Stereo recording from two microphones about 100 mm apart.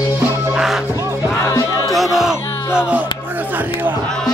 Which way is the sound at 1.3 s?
30° left (ahead or behind).